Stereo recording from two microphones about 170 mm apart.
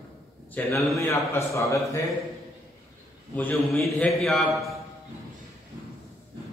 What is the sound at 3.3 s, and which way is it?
A man's voice, 10° left (ahead or behind).